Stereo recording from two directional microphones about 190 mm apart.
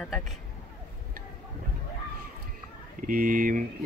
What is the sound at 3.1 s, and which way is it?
Speech, 45° right (ahead or behind).